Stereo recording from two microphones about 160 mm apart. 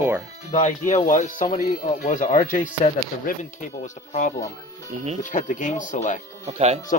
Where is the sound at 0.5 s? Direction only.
45° left (ahead or behind).